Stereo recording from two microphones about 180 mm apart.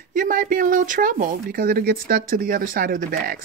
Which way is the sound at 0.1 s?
50° right (ahead or behind).